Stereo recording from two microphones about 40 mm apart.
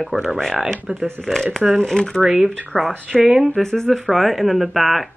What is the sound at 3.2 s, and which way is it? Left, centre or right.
Speech, centre.